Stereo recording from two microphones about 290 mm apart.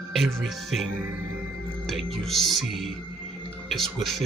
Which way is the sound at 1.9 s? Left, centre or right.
Centre.